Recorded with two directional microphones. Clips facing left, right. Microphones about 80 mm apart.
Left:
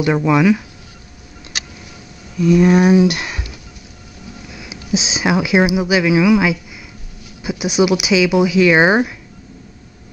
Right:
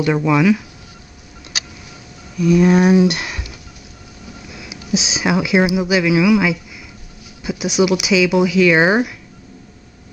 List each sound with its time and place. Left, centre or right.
0.0 s speech: centre
2.3 s a sound: left
2.6 s speech: centre
4.6 s speech: centre